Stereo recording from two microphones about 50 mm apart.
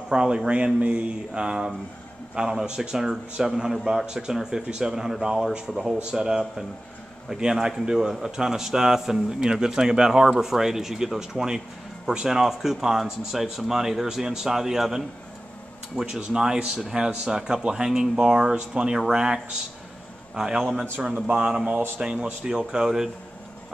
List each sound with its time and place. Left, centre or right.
0.1 s a man's voice: centre
21.1 s a man's voice: right
21.5 s speech: centre